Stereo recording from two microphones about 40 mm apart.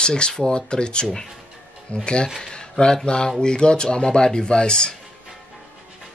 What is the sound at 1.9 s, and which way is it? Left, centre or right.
Speech, left.